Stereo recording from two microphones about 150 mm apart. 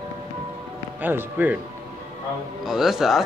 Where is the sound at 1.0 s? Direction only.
10° right (ahead or behind).